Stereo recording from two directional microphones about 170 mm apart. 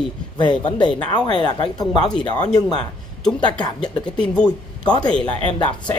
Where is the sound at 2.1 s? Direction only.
10° left (ahead or behind).